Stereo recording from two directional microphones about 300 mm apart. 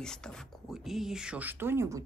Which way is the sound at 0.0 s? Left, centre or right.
Centre.